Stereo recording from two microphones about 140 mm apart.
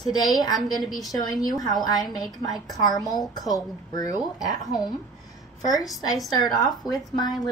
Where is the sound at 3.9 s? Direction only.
30° left (ahead or behind).